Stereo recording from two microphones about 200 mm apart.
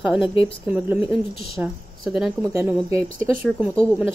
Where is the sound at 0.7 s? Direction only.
5° right (ahead or behind).